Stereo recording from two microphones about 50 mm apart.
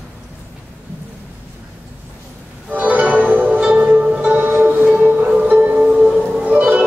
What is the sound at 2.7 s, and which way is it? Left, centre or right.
Music, right.